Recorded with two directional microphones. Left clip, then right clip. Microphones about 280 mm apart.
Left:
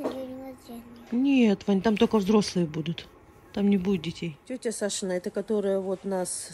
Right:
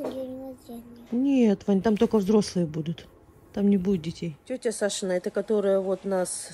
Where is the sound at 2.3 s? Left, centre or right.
Left.